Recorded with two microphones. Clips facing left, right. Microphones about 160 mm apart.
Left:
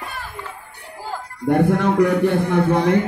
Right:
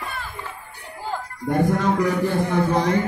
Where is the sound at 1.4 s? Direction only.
65° left (ahead or behind).